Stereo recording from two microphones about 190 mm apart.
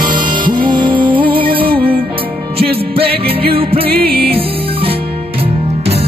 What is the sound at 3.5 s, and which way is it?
Music, 30° right (ahead or behind).